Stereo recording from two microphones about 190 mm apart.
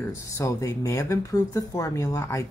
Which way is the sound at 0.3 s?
15° left (ahead or behind).